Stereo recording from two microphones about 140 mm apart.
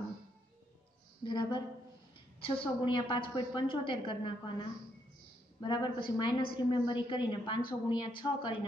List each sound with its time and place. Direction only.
1.2 s a woman's voice: 35° left (ahead or behind)